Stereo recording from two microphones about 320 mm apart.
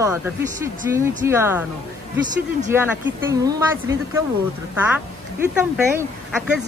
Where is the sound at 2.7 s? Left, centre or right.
Centre.